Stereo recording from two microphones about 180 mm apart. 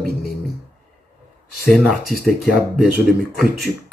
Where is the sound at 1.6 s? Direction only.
55° right (ahead or behind).